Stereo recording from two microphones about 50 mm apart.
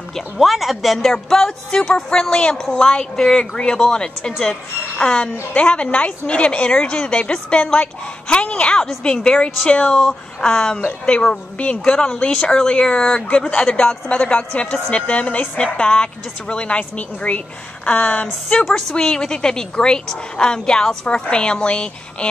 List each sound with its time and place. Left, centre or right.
0.4 s a woman's voice: centre
13.7 s a woman's voice: left
18.7 s a woman's voice: centre